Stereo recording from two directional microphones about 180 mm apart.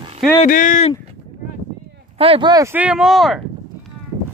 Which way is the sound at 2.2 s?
30° right (ahead or behind).